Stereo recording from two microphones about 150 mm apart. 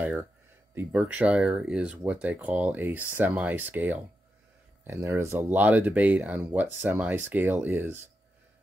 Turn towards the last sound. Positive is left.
turn(degrees=-15)  # may be behind; listen again after turning